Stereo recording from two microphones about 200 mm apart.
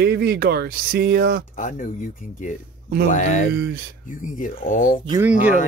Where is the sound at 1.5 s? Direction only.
40° left (ahead or behind).